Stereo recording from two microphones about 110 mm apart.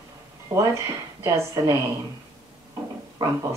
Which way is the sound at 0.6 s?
30° right (ahead or behind).